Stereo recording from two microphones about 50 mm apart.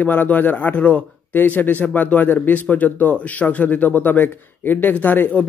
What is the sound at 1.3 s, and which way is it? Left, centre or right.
Speech, left.